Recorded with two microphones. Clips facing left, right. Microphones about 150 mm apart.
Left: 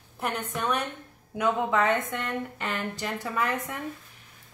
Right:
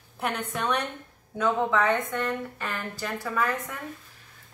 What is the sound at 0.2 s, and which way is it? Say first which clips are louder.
Speech: right 1 dB; centre (ahead or behind).